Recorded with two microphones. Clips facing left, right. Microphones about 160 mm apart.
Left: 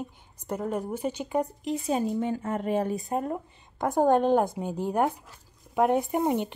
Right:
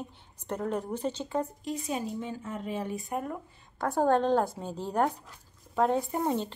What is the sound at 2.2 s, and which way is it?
Speech, 55° left (ahead or behind).